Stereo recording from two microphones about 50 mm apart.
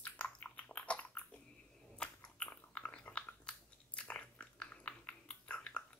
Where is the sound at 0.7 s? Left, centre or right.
Left.